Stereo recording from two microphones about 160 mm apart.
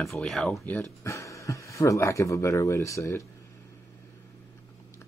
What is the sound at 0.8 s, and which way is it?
Speech, 20° left (ahead or behind).